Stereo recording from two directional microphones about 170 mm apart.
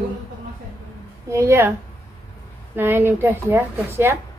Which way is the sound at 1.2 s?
15° right (ahead or behind).